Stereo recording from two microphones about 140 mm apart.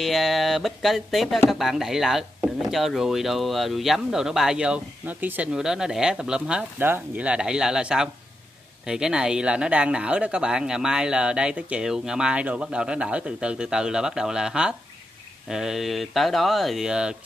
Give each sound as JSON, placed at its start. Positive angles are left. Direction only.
{"t": 0.0, "sound": "speech", "side_deg": 0}